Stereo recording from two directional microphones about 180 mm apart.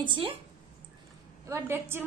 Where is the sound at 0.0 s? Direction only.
25° right (ahead or behind).